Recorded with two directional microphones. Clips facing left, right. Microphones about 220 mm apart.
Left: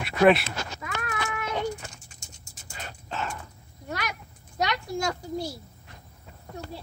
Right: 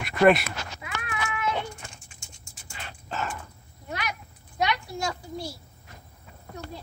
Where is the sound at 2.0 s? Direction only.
40° left (ahead or behind).